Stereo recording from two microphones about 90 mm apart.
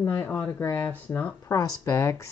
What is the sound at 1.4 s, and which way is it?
Speech, 40° left (ahead or behind).